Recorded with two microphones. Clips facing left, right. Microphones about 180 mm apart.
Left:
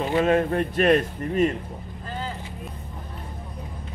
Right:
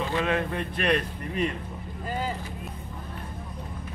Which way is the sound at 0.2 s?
40° left (ahead or behind).